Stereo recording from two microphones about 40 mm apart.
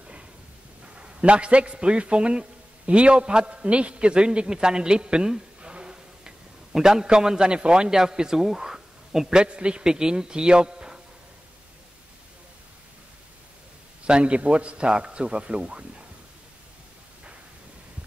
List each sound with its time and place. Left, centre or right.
0.9 s a man's voice: right
14.0 s a man's voice: right